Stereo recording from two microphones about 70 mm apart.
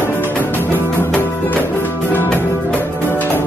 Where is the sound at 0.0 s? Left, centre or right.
Left.